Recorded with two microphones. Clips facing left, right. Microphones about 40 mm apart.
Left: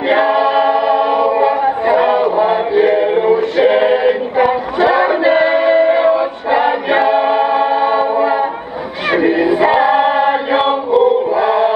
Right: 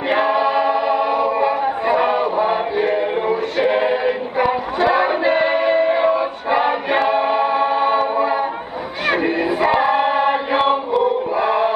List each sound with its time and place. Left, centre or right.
0.4 s a capella: left
0.7 s choir: left
2.8 s music: left
4.9 s music: centre
5.4 s singing: centre
5.9 s choir: centre
8.2 s music: centre
9.8 s choir: centre
11.3 s choir: centre